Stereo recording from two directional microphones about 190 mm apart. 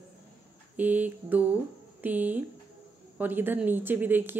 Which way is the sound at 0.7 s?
10° right (ahead or behind).